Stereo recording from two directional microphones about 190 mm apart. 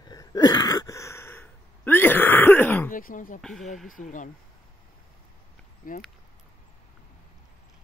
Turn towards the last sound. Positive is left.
turn(degrees=45)  # may be behind; listen again after turning